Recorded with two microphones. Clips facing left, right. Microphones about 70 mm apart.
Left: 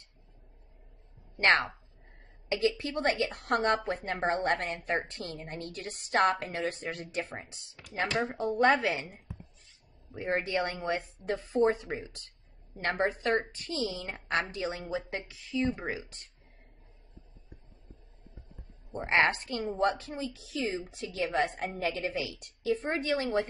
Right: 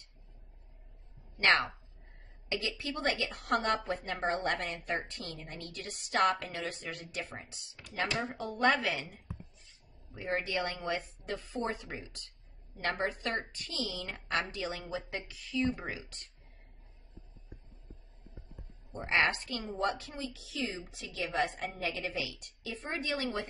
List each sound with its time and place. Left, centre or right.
1.4 s a woman's voice: left
18.9 s a woman's voice: left